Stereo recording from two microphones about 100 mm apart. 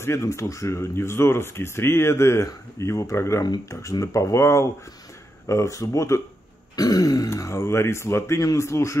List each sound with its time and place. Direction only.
0.0 s speech: 25° left (ahead or behind)